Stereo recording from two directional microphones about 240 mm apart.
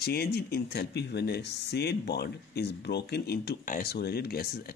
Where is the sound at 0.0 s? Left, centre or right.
Left.